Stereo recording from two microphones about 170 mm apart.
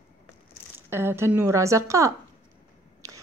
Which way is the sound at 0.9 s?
15° right (ahead or behind).